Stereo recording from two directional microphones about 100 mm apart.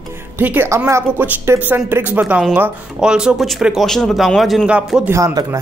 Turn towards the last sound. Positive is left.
turn(degrees=-30)  # may be behind; listen again after turning